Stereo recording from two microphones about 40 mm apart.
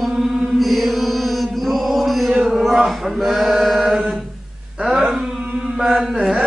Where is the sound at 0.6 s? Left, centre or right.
Centre.